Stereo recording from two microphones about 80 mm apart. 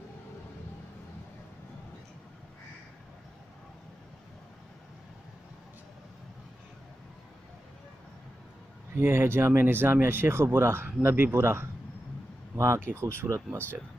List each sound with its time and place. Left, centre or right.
8.9 s speech: right